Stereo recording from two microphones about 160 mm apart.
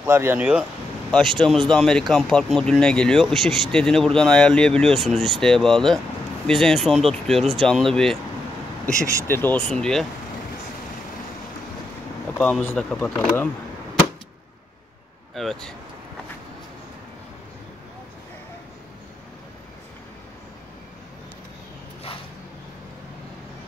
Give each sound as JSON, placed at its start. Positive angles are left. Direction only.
{"t": 0.0, "sound": "speech", "side_deg": -15}
{"t": 8.9, "sound": "speech", "side_deg": -20}
{"t": 9.3, "sound": "speech", "side_deg": 10}
{"t": 12.4, "sound": "speech", "side_deg": 5}
{"t": 15.3, "sound": "speech", "side_deg": 0}